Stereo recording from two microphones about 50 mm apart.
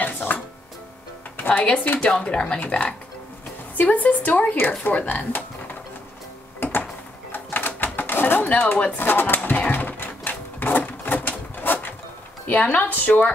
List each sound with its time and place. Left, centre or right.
0.0 s music: left
1.3 s speech: left
7.3 s a sound: left
8.9 s speech: left
9.6 s a sound: left
12.7 s speech: left